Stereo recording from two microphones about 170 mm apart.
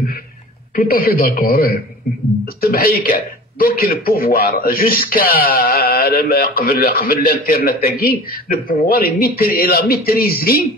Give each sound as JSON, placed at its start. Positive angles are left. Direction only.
{"t": 0.7, "sound": "a man's voice", "side_deg": 60}